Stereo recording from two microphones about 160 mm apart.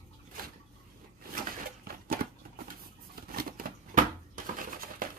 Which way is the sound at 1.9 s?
70° right (ahead or behind).